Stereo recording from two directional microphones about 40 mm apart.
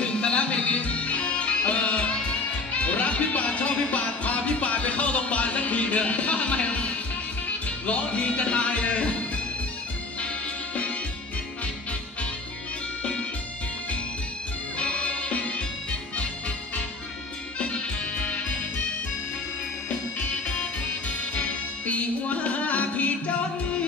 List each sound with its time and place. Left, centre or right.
0.0 s music: left
14.8 s music: left
21.4 s music: left